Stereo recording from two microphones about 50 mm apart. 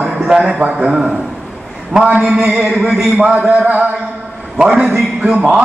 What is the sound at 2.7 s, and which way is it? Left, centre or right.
Speech, centre.